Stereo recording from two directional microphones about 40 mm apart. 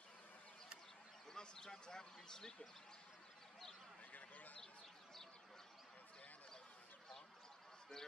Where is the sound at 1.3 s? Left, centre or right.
Centre.